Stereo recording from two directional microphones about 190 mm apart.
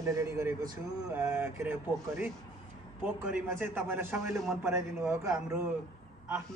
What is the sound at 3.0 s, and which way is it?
Speech, 10° right (ahead or behind).